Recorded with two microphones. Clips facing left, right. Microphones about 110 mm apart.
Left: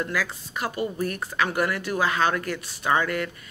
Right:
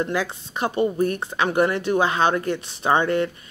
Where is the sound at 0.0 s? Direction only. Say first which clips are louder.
Right 4 dB; 25° right (ahead or behind).